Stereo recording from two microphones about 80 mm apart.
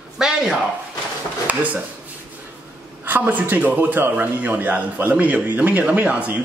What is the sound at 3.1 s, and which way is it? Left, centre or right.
A man's voice, right.